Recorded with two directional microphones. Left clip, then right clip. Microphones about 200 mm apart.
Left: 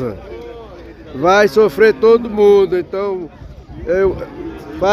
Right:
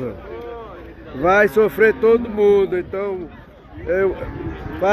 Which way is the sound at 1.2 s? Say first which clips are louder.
Left 4 dB; 15° left (ahead or behind).